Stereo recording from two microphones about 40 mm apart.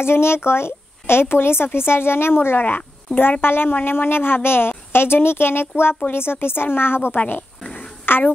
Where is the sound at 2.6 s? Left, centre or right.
Left.